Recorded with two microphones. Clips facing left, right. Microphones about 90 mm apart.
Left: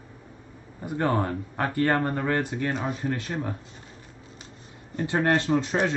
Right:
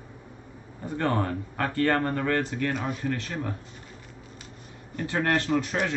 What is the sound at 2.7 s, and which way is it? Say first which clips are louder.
Speech: left 1 dB; 30° left (ahead or behind).